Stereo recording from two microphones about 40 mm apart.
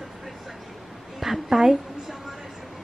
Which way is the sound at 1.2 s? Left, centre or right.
Centre.